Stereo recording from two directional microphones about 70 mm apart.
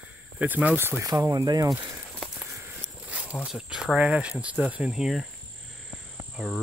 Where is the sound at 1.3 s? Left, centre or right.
Right.